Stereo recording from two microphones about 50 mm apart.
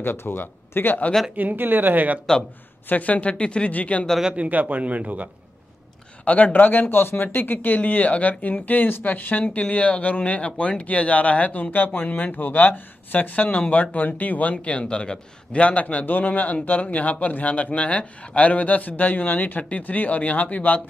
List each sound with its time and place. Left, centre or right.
0.0 s speech: left
1.3 s speech: right
2.9 s speech: left
4.2 s a man's voice: centre
4.5 s speech: right
6.2 s a man's voice: left
14.6 s a man's voice: left